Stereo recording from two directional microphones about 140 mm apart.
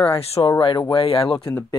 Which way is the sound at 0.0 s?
45° left (ahead or behind).